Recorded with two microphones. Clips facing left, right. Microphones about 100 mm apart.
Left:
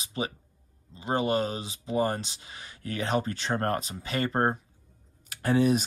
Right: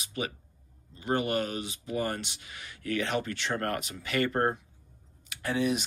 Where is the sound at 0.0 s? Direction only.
30° left (ahead or behind).